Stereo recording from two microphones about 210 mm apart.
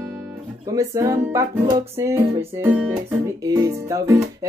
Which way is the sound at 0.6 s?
15° right (ahead or behind).